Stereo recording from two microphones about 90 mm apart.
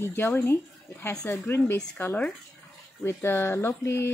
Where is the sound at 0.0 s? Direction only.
25° left (ahead or behind).